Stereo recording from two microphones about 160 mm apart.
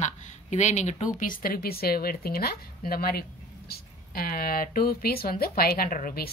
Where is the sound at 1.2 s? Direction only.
60° left (ahead or behind).